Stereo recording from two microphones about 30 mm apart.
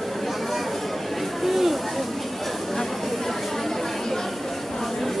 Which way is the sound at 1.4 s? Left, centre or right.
Centre.